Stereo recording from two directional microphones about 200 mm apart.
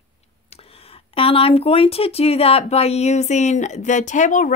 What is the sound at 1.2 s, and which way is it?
Speech, 30° left (ahead or behind).